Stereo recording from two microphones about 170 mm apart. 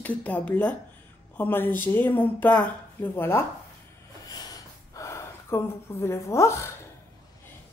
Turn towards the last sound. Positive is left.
turn(degrees=15)  # may be behind; listen again after turning